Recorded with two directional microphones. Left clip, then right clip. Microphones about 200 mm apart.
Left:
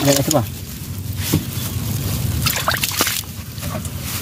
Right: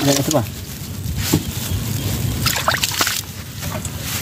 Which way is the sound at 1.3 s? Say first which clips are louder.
Right 2 dB; 25° right (ahead or behind).